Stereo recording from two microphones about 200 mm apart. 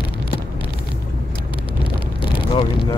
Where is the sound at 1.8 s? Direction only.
25° left (ahead or behind).